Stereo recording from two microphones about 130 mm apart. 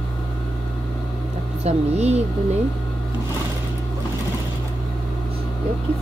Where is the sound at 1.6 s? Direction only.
55° right (ahead or behind).